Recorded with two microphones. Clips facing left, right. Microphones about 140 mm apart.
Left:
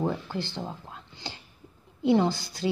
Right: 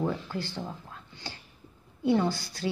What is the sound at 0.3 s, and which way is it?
A woman's voice, 25° left (ahead or behind).